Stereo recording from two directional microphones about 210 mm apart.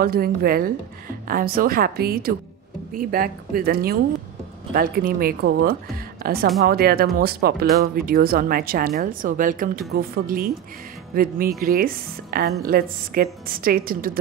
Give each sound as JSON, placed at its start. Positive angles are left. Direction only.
{"t": 0.0, "sound": "speech", "side_deg": -45}